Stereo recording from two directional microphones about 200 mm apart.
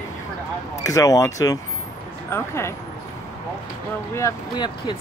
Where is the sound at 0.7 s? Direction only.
15° left (ahead or behind).